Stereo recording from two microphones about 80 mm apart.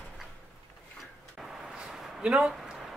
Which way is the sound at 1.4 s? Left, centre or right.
Centre.